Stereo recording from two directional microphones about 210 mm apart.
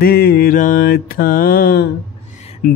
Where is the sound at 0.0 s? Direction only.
50° left (ahead or behind).